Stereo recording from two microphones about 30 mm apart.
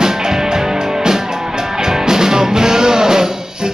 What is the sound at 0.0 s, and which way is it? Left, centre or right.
Music, right.